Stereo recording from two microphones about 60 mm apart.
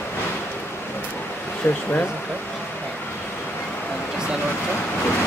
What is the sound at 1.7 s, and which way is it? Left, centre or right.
Speech, left.